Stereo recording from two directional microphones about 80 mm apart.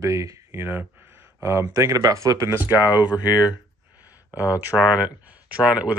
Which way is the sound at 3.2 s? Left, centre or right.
Left.